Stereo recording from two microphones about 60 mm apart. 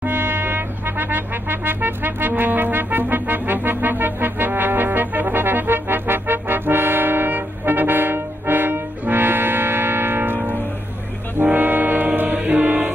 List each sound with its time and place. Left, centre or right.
0.0 s music: right